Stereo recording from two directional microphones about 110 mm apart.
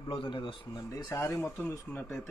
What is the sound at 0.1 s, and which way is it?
Speech, 50° left (ahead or behind).